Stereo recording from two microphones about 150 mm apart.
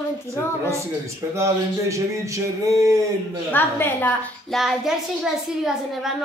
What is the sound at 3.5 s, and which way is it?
Speech, 10° left (ahead or behind).